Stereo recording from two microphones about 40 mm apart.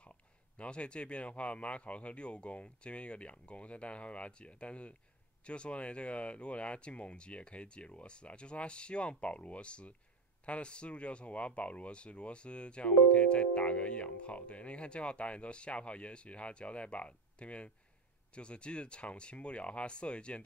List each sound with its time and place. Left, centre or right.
0.6 s speech: left